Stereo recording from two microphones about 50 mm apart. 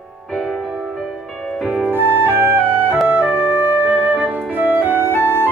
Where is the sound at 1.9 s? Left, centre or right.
Right.